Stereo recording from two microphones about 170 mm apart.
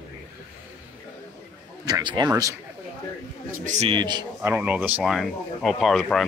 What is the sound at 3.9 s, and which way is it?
Speech, 25° right (ahead or behind).